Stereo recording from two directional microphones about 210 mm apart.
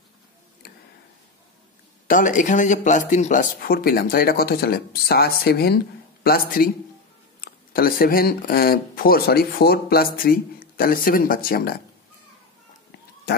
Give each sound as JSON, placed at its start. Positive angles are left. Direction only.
{"t": 2.0, "sound": "speech", "side_deg": 40}